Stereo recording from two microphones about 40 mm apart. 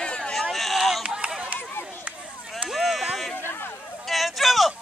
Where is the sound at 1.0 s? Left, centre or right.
Right.